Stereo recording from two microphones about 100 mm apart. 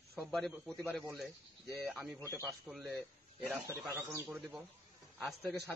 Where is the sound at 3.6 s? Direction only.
30° right (ahead or behind).